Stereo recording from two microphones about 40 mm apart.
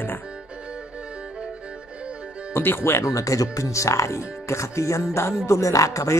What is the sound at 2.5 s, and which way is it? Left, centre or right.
Speech, left.